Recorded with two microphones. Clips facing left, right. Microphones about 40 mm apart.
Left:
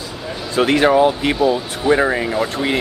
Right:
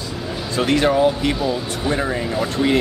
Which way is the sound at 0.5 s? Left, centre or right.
Left.